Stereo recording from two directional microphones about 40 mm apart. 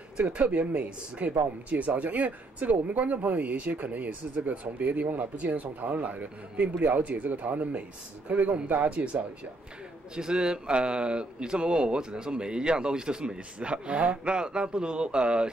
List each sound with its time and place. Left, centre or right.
0.2 s speech: right
8.9 s speech: right